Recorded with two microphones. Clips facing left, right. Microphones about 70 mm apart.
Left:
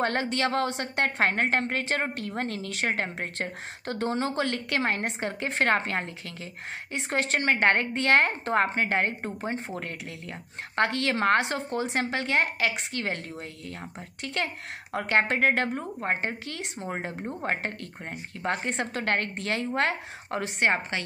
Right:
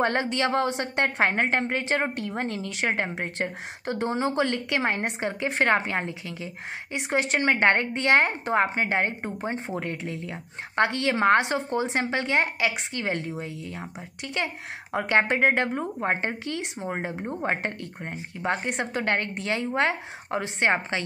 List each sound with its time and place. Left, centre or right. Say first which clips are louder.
0.0 s a woman's voice: right 2 dB; right
14.3 s a woman's voice: right 2 dB; right
16.1 s a woman's voice: even; right; by 17.5 s centre
17.5 s a woman's voice: right 1 dB; right